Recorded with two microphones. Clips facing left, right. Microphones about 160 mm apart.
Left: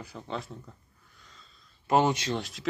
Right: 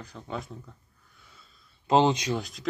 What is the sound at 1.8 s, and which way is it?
Speech, 20° right (ahead or behind).